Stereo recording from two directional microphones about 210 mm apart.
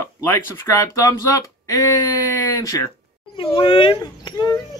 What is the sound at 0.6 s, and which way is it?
Speech, 15° left (ahead or behind).